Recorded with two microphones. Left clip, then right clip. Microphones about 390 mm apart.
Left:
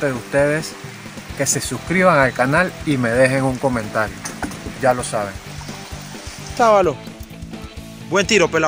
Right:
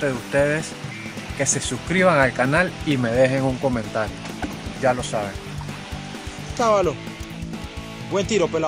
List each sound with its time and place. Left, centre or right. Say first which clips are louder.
0.0 s speech: left 3 dB; right
5.1 s speech: left 3 dB; right
6.6 s speech: left 5 dB; right
8.1 s speech: left 6 dB; right